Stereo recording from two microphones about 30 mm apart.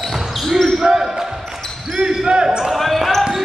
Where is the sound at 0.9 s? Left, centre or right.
Centre.